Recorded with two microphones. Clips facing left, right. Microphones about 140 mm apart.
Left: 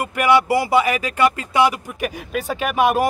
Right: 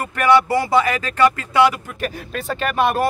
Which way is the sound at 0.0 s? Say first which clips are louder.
Right 1 dB; 10° left (ahead or behind).